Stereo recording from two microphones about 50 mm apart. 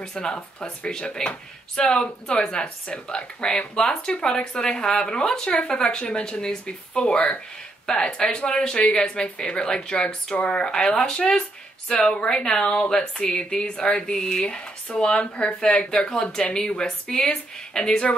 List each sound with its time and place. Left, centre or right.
0.0 s a woman's voice: centre